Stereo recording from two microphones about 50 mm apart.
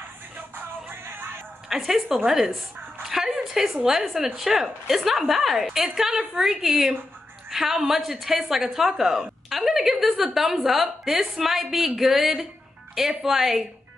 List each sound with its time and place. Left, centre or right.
0.6 s music: right
1.7 s a woman's voice: centre
3.0 s dog: centre
3.5 s a woman's voice: centre